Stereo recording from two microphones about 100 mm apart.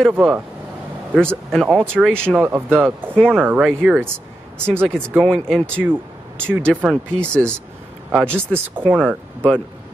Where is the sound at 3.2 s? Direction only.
5° left (ahead or behind).